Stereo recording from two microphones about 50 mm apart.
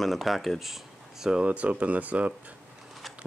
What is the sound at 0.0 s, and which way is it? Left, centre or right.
Speech, centre.